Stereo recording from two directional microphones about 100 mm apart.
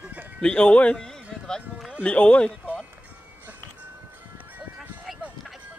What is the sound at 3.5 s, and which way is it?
Music, 15° right (ahead or behind).